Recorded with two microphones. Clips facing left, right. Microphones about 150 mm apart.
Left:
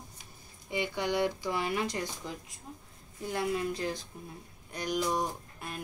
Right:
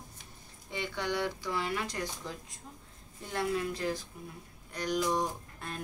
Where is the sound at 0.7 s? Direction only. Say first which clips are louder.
Left 3 dB; 15° left (ahead or behind).